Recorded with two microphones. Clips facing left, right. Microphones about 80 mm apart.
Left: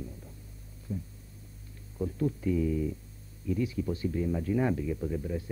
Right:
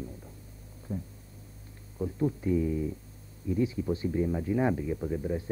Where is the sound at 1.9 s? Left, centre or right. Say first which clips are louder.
Right 1 dB; centre.